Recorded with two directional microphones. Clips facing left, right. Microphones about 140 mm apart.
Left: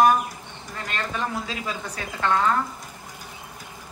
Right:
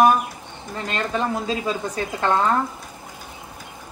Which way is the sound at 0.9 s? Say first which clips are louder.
Right 5 dB; 25° right (ahead or behind).